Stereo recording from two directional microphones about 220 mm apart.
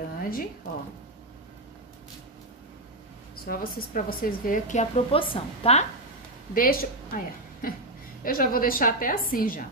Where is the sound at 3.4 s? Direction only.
40° left (ahead or behind).